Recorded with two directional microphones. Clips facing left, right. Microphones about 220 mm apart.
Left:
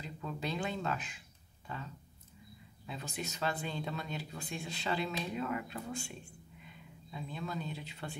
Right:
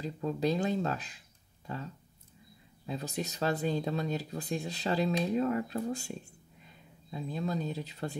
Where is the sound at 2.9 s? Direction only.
40° right (ahead or behind).